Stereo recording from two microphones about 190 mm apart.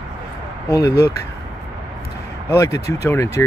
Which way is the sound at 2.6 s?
15° left (ahead or behind).